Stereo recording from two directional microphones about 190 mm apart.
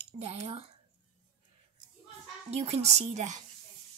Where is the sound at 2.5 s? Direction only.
35° right (ahead or behind).